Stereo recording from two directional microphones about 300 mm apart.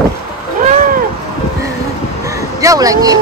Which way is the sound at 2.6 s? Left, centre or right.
Centre.